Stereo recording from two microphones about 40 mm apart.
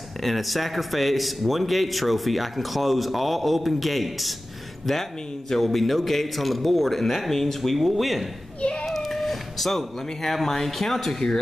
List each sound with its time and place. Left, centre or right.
0.2 s a man's voice: centre
5.5 s a man's voice: centre
8.5 s a sound: left
8.8 s speech: centre